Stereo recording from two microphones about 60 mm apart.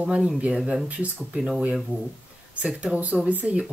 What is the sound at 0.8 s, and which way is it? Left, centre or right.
Speech, right.